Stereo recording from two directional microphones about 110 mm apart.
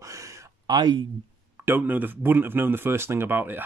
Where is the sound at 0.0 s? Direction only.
30° right (ahead or behind).